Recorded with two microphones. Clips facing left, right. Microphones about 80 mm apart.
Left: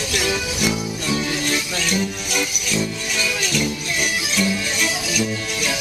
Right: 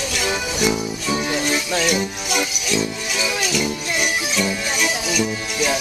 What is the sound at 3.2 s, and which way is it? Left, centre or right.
Music, centre.